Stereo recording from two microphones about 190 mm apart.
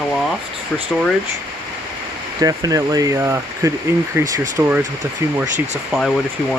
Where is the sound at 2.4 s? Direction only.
20° right (ahead or behind).